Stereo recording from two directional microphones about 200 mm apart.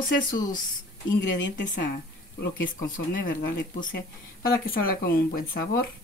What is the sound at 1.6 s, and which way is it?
Speech, 55° left (ahead or behind).